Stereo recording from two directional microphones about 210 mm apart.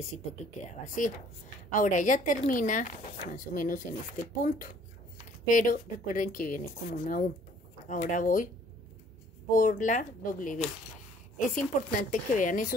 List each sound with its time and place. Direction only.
0.7 s a woman's voice: 35° left (ahead or behind)
9.5 s a woman's voice: 40° left (ahead or behind)